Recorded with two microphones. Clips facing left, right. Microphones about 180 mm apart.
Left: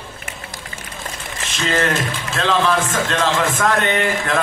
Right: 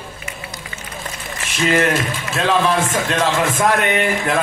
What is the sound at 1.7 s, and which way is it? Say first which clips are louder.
A man's voice: right 2 dB; 15° right (ahead or behind).